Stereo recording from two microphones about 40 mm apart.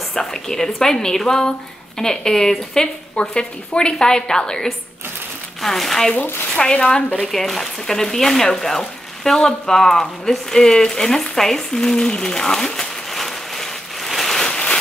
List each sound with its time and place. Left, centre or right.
0.1 s a woman's voice: centre
5.6 s speech: centre
6.5 s a woman's voice: left
7.2 s speech: centre
13.1 s rain on surface: centre
14.4 s rain on surface: left